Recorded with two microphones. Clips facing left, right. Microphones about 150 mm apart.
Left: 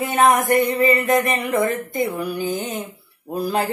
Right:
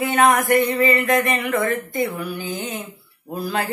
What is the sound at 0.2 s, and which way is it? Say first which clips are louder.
Speech: left 1 dB; 20° left (ahead or behind).